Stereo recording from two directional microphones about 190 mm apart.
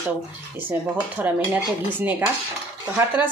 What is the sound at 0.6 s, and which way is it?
A woman's voice, 10° right (ahead or behind).